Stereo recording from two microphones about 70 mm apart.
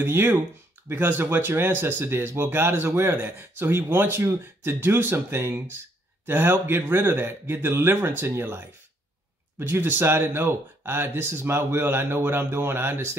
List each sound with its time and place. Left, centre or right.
0.0 s speech: right